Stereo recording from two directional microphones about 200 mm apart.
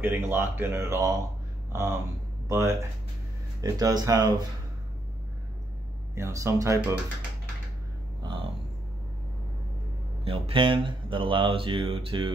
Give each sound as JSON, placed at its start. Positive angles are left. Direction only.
{"t": 0.0, "sound": "speech", "side_deg": -10}
{"t": 6.1, "sound": "speech", "side_deg": -15}
{"t": 8.2, "sound": "a sound", "side_deg": -25}
{"t": 10.2, "sound": "speech", "side_deg": -25}